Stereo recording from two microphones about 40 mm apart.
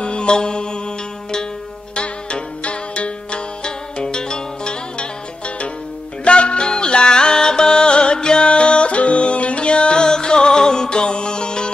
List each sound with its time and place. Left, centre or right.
0.0 s mantra: left
2.0 s music: left
6.2 s music: left